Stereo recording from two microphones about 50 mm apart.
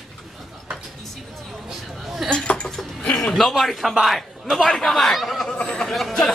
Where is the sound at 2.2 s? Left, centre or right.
Centre.